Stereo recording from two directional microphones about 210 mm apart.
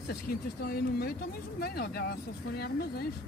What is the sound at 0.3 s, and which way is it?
Speech, 45° left (ahead or behind).